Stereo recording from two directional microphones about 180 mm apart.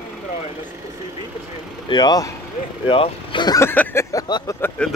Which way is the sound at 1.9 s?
20° left (ahead or behind).